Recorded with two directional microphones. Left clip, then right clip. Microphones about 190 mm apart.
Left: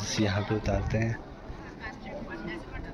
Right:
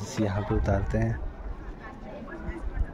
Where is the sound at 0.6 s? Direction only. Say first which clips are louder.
Right 2 dB; 30° right (ahead or behind).